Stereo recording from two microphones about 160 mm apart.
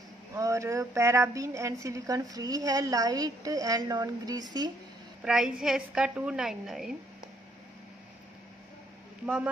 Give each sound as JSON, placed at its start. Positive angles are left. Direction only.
{"t": 0.3, "sound": "a woman's voice", "side_deg": -20}
{"t": 5.2, "sound": "a woman's voice", "side_deg": -5}
{"t": 9.2, "sound": "speech", "side_deg": -10}